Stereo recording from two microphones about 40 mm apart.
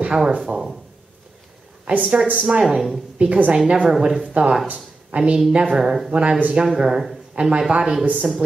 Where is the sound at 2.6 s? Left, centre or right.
Centre.